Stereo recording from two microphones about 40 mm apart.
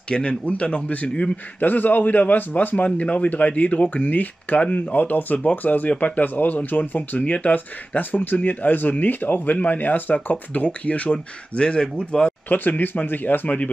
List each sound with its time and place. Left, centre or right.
0.1 s speech: left
1.6 s a man's voice: left
11.1 s speech: left
12.4 s a man's voice: left